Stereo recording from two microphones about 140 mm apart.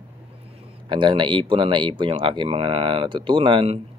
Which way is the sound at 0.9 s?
35° right (ahead or behind).